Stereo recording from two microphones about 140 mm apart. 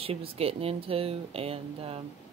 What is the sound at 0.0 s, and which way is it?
Speech, 45° right (ahead or behind).